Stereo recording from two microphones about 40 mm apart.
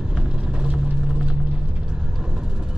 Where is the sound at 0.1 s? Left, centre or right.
Right.